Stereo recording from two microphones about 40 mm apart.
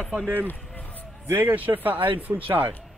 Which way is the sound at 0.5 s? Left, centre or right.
Left.